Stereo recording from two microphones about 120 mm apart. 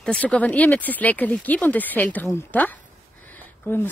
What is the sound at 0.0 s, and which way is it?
Speech, 10° left (ahead or behind).